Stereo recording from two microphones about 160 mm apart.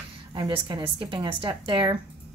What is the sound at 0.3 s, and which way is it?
A woman's voice, 30° right (ahead or behind).